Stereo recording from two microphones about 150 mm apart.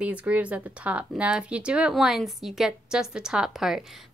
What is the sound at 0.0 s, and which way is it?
Speech, 10° right (ahead or behind).